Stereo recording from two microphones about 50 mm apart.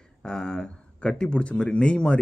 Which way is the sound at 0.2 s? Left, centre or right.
Centre.